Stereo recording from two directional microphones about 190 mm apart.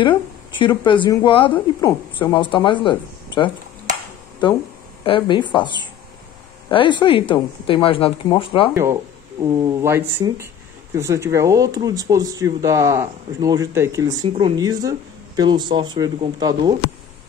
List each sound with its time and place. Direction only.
0.0 s speech: 25° left (ahead or behind)
5.0 s speech: 25° left (ahead or behind)
9.4 s speech: 20° right (ahead or behind)